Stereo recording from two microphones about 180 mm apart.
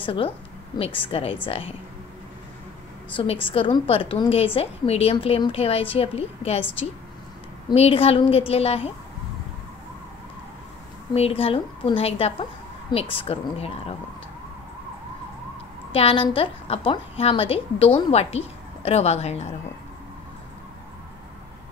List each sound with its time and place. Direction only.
0.0 s a woman's voice: 30° left (ahead or behind)
3.4 s a woman's voice: 30° left (ahead or behind)
7.7 s a woman's voice: 35° left (ahead or behind)
11.1 s a woman's voice: 35° left (ahead or behind)
15.9 s a woman's voice: 30° left (ahead or behind)